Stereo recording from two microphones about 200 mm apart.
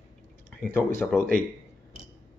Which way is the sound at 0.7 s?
10° left (ahead or behind).